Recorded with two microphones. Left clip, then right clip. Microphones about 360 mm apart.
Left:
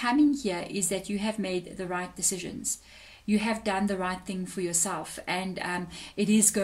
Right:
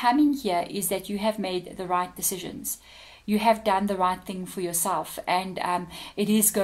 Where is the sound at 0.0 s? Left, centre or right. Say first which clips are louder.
Right 3 dB; centre.